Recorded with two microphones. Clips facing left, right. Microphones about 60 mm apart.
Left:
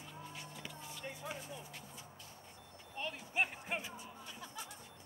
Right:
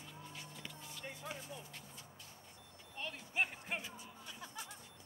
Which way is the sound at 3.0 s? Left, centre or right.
Centre.